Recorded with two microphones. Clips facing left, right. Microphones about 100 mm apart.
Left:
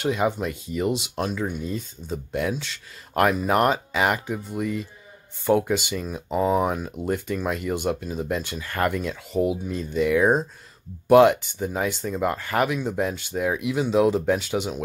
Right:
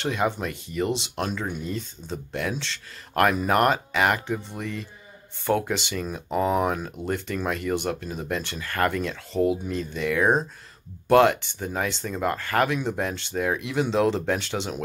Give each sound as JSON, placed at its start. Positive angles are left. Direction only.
{"t": 0.0, "sound": "speech", "side_deg": 15}
{"t": 1.2, "sound": "speech", "side_deg": 5}
{"t": 1.7, "sound": "speech", "side_deg": 20}